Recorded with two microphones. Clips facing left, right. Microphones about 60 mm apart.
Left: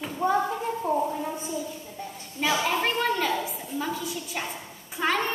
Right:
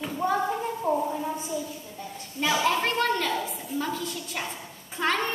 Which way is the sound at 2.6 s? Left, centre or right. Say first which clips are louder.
Right 1 dB; centre.